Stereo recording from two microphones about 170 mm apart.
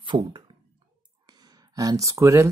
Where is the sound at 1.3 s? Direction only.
25° right (ahead or behind).